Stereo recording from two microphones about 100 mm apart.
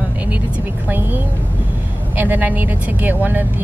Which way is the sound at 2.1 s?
20° right (ahead or behind).